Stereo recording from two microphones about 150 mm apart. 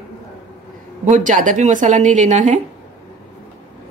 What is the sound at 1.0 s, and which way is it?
A woman's voice, 55° right (ahead or behind).